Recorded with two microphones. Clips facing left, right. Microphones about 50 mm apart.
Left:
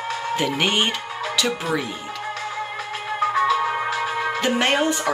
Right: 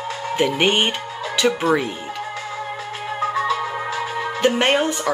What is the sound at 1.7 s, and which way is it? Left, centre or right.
Music, right.